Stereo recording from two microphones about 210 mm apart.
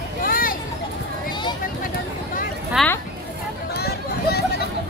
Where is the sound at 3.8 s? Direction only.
50° left (ahead or behind).